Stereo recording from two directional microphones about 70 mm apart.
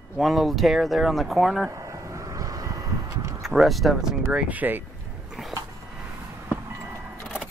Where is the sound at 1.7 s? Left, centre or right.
Right.